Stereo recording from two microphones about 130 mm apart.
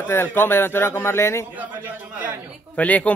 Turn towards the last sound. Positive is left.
turn(degrees=10)  # may be behind; listen again after turning